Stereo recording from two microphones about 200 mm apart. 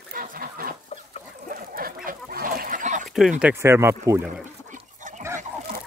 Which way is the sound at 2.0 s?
45° right (ahead or behind).